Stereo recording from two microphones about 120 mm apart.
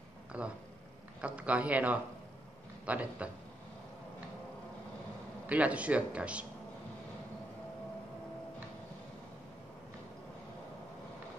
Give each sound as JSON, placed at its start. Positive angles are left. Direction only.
{"t": 0.3, "sound": "a man's voice", "side_deg": -10}
{"t": 5.5, "sound": "a man's voice", "side_deg": -10}